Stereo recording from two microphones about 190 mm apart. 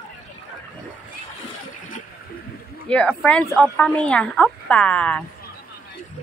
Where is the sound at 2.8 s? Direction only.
5° left (ahead or behind).